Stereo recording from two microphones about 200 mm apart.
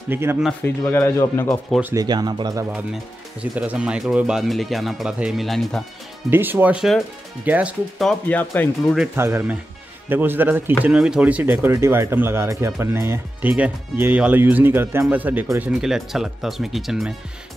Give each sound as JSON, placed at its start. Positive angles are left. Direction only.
{"t": 0.1, "sound": "speech", "side_deg": -10}
{"t": 0.5, "sound": "speech", "side_deg": 10}
{"t": 1.7, "sound": "speech", "side_deg": -10}
{"t": 2.0, "sound": "speech", "side_deg": -20}
{"t": 3.5, "sound": "speech", "side_deg": -5}
{"t": 6.3, "sound": "speech", "side_deg": -10}
{"t": 8.9, "sound": "speech", "side_deg": -5}